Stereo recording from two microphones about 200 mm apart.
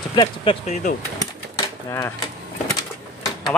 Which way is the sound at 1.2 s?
15° left (ahead or behind).